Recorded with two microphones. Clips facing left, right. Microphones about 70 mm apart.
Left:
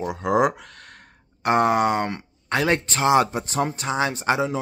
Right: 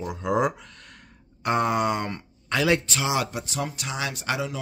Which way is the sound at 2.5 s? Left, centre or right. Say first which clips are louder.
Left 1 dB; left.